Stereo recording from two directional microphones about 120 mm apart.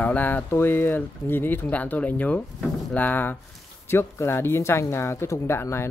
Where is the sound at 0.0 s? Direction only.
15° left (ahead or behind).